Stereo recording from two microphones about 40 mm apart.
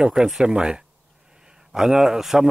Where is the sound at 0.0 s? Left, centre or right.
Centre.